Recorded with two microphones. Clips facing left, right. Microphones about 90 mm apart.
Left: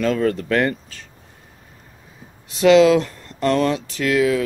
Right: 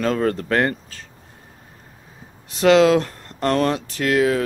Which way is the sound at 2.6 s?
45° right (ahead or behind).